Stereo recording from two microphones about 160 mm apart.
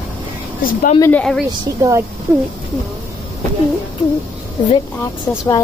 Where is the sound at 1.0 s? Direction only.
5° left (ahead or behind).